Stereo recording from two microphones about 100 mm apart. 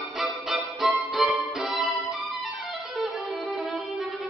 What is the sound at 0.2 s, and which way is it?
Music, centre (ahead or behind).